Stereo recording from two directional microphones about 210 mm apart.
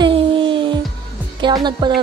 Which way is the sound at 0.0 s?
25° right (ahead or behind).